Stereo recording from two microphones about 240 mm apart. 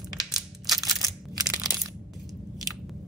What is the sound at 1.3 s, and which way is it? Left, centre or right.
Crushing, centre.